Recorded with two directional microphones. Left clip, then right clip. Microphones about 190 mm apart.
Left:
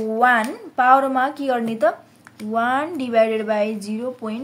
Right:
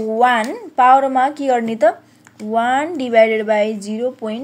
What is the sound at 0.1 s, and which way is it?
A woman's voice, 20° right (ahead or behind).